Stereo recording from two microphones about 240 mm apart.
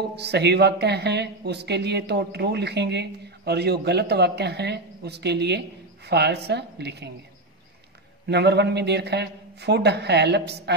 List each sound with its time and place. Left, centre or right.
0.1 s speech: right
8.3 s speech: right